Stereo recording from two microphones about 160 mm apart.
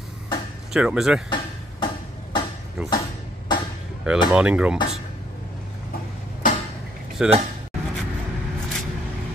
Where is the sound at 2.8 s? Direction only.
5° right (ahead or behind).